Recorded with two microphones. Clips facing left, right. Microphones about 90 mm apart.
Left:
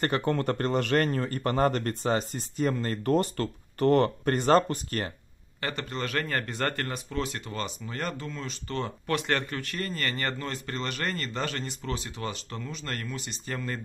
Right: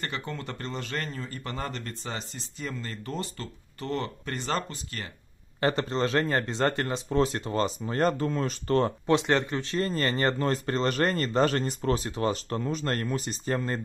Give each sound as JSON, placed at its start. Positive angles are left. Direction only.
{"t": 0.0, "sound": "a man's voice", "side_deg": 50}
{"t": 5.6, "sound": "speech", "side_deg": -30}
{"t": 7.1, "sound": "speech", "side_deg": -30}
{"t": 9.0, "sound": "speech", "side_deg": -20}